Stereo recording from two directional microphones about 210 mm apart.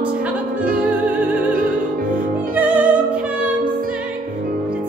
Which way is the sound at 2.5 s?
5° right (ahead or behind).